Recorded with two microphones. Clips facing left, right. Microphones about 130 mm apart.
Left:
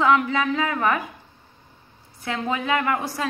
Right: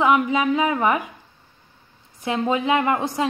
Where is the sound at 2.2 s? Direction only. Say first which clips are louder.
Right 4 dB; 20° right (ahead or behind).